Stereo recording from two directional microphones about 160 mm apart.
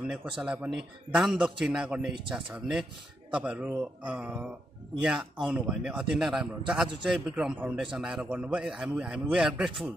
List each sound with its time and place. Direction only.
0.0 s a man's voice: 5° right (ahead or behind)